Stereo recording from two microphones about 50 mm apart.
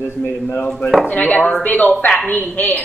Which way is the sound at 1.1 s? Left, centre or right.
Left.